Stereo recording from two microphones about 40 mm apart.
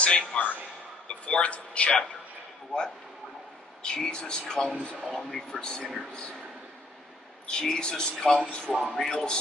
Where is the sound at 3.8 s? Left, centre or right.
Centre.